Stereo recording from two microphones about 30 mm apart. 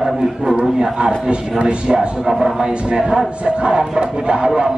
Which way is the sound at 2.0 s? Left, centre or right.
Centre.